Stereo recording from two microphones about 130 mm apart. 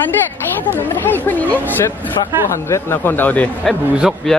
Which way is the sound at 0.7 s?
15° left (ahead or behind).